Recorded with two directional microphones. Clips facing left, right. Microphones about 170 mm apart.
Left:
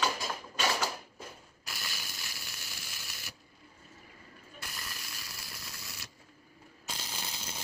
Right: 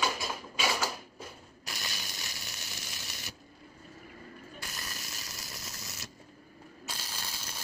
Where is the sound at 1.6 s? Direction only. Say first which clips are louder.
Right 2 dB; 20° right (ahead or behind).